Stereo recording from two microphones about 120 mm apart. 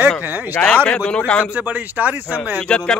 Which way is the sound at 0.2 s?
15° right (ahead or behind).